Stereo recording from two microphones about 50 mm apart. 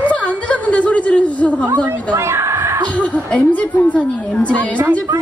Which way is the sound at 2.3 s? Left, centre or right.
Right.